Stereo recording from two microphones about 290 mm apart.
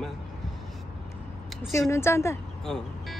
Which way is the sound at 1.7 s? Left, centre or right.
Centre.